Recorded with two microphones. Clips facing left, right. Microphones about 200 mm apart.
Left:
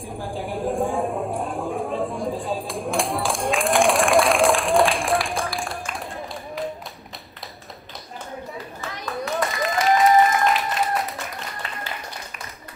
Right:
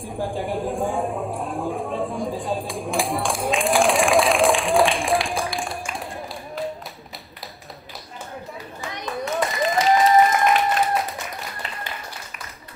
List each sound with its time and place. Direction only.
0.3 s a sound: centre (ahead or behind)
5.5 s tap: centre (ahead or behind)
8.8 s clapping: 20° right (ahead or behind)
9.1 s applause: centre (ahead or behind)